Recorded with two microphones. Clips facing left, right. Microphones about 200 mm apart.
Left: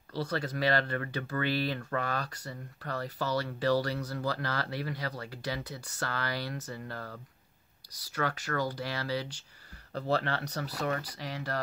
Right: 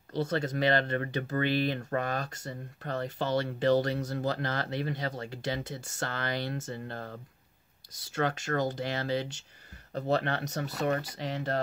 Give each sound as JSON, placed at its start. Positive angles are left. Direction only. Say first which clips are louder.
{"t": 0.1, "sound": "speech", "louder": "right 3 dB", "side_deg": -25}